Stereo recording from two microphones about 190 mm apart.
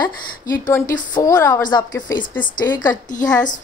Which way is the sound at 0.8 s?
45° left (ahead or behind).